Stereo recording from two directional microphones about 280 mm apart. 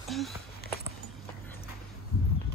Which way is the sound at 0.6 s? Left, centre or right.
Left.